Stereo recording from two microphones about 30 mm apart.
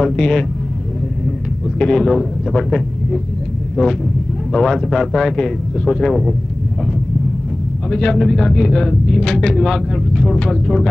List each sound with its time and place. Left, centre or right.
0.0 s speech: centre
1.9 s a man's voice: centre
3.8 s speech: left
4.6 s speech: centre
7.9 s speech: left
8.2 s a man's voice: centre